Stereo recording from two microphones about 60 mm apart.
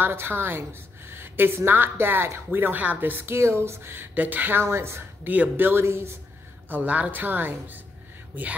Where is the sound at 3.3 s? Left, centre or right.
Right.